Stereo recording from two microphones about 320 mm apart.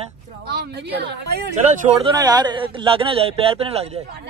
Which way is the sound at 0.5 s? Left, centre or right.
Right.